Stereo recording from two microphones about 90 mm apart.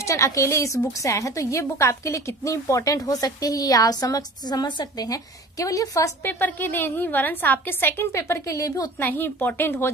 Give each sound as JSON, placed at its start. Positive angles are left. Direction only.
{"t": 0.0, "sound": "a woman's voice", "side_deg": 35}
{"t": 6.2, "sound": "a woman's voice", "side_deg": 20}
{"t": 9.0, "sound": "a woman's voice", "side_deg": 20}